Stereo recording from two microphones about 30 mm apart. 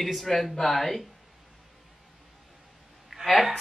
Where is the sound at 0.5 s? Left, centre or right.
Centre.